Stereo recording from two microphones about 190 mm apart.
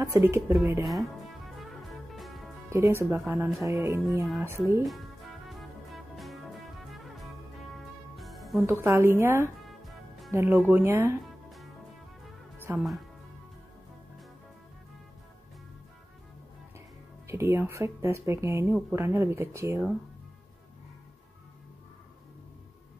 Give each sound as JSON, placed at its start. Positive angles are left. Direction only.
{"t": 0.0, "sound": "speech", "side_deg": -15}
{"t": 0.8, "sound": "music", "side_deg": 0}
{"t": 2.7, "sound": "speech", "side_deg": -15}
{"t": 3.6, "sound": "speech", "side_deg": -15}
{"t": 5.5, "sound": "music", "side_deg": 0}
{"t": 8.8, "sound": "speech", "side_deg": -15}
{"t": 9.7, "sound": "music", "side_deg": 0}
{"t": 10.3, "sound": "speech", "side_deg": -15}
{"t": 12.5, "sound": "music", "side_deg": -10}
{"t": 17.3, "sound": "speech", "side_deg": -15}